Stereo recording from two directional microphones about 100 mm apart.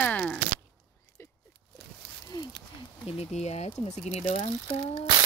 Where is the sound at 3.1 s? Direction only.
85° left.